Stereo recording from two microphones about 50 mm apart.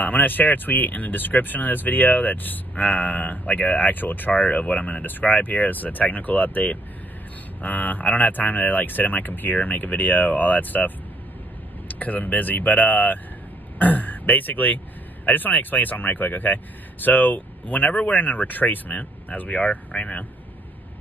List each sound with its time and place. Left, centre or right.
0.0 s speech: left
12.0 s speech: left